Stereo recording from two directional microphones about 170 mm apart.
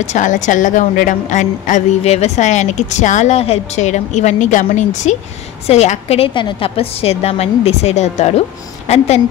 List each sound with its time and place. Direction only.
0.0 s a woman's voice: 45° left (ahead or behind)